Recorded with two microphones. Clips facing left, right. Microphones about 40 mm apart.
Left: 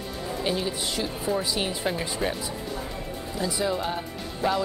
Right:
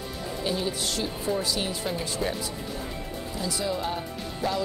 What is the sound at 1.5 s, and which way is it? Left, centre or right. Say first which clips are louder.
Speech: left 2 dB; centre.